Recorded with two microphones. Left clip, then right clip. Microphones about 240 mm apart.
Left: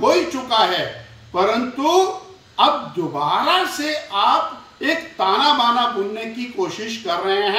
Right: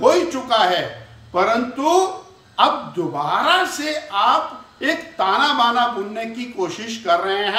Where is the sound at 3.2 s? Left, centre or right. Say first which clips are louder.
Even; centre.